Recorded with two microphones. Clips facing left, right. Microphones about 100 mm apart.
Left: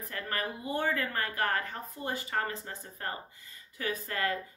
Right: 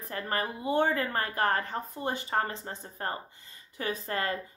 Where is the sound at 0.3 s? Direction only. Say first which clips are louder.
Right 5 dB; 25° right (ahead or behind).